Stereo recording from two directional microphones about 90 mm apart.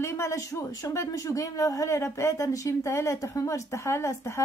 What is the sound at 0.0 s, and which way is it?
Speech, 30° left (ahead or behind).